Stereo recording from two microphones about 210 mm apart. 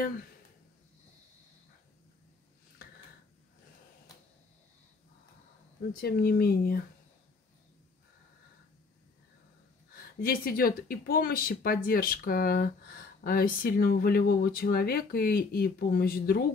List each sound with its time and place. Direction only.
5.9 s speech: 45° left (ahead or behind)
9.9 s speech: 45° left (ahead or behind)